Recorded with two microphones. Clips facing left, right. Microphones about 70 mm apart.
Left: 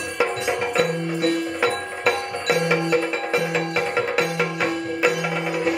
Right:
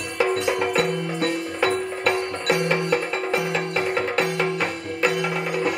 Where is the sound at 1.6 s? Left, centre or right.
Centre.